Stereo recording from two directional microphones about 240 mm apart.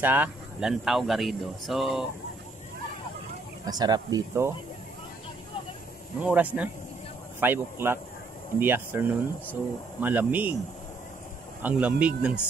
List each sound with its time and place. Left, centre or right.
0.0 s speech: centre
3.6 s speech: centre
6.2 s speech: centre
11.6 s speech: centre